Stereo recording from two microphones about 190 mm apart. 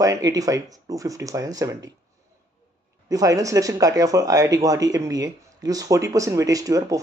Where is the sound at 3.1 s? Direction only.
20° right (ahead or behind).